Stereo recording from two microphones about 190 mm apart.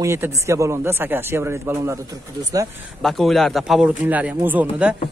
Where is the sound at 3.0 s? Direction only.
Centre (ahead or behind).